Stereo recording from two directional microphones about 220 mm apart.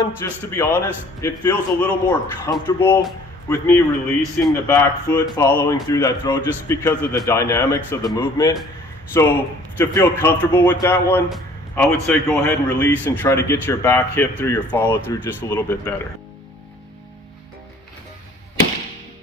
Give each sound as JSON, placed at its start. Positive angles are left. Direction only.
{"t": 0.0, "sound": "a man's voice", "side_deg": 10}